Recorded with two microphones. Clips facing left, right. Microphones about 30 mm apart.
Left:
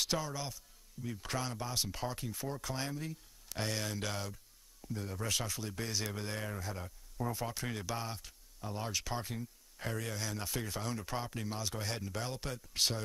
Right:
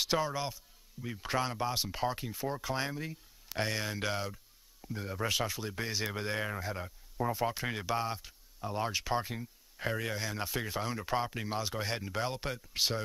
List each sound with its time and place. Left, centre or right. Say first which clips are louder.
0.2 s speech: right 6 dB; right
12.6 s speech: even; centre